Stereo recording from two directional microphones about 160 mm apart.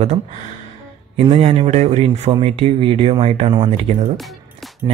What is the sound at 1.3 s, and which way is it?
Speech, 40° right (ahead or behind).